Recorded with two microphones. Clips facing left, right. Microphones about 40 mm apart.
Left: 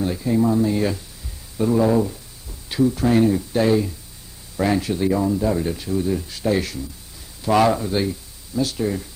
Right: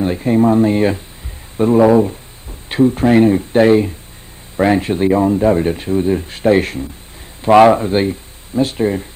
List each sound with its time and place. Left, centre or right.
0.0 s speech: right